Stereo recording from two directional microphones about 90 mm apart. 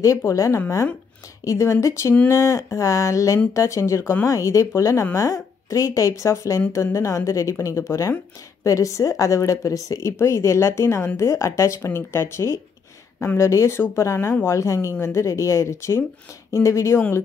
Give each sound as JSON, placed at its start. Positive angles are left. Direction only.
{"t": 0.2, "sound": "a woman's voice", "side_deg": 35}